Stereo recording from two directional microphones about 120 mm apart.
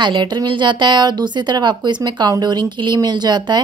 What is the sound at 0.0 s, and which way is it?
Speech, 40° right (ahead or behind).